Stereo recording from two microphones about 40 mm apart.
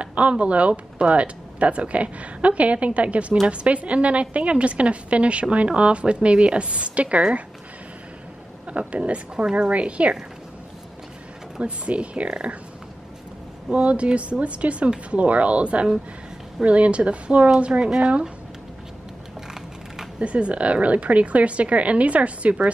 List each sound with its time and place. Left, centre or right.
0.0 s a woman's voice: right
8.6 s a woman's voice: right
11.6 s speech: right
13.7 s a woman's voice: right
20.2 s a woman's voice: right